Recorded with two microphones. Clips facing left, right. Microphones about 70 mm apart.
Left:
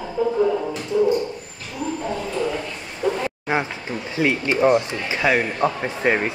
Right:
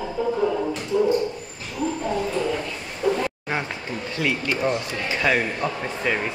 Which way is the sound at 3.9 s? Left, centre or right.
Centre.